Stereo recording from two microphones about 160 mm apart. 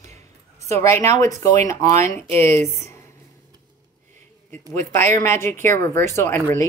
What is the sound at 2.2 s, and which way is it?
Speech, 40° right (ahead or behind).